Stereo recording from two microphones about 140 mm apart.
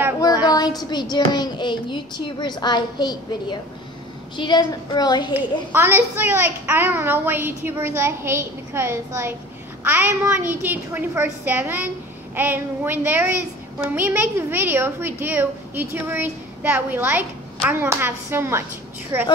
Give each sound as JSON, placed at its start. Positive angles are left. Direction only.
{"t": 0.2, "sound": "speech", "side_deg": 30}
{"t": 5.3, "sound": "a woman's voice", "side_deg": -15}